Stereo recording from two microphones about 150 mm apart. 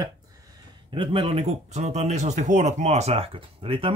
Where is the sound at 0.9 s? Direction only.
35° right (ahead or behind).